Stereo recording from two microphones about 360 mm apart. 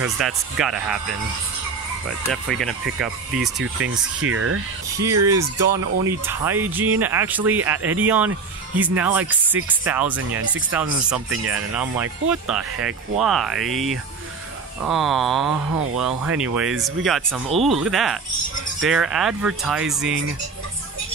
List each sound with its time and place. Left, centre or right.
0.0 s speech: centre
2.4 s speech: centre
4.2 s speech: right
5.2 s speech: centre